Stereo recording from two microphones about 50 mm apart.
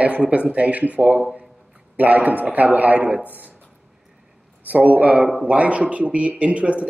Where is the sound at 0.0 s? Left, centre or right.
Right.